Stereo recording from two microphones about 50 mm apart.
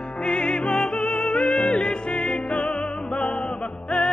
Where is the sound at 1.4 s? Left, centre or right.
Centre.